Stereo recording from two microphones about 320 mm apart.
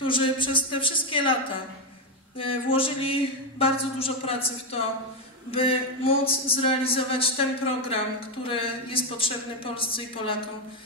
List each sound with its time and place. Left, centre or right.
0.0 s speech: centre